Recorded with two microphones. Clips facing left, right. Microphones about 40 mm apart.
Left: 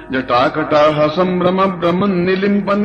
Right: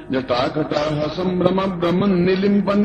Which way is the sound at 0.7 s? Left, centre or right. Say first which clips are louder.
Left 9 dB; left.